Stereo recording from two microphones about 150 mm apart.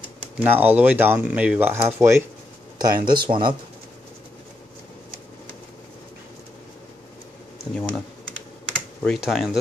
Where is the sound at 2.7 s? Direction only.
30° right (ahead or behind).